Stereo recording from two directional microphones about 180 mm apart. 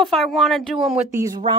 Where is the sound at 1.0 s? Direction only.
20° right (ahead or behind).